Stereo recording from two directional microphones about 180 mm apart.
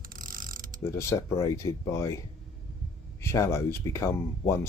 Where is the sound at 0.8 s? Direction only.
15° left (ahead or behind).